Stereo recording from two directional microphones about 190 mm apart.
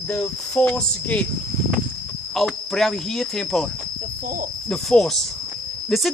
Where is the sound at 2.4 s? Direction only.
Centre (ahead or behind).